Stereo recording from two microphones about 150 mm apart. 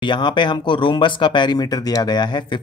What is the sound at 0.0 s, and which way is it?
Speech, 30° left (ahead or behind).